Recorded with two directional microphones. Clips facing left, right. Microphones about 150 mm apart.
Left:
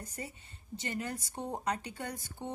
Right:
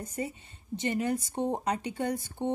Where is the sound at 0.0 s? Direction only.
25° right (ahead or behind).